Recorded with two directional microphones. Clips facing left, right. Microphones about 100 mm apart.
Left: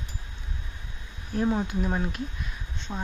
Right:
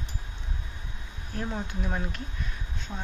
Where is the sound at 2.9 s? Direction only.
20° left (ahead or behind).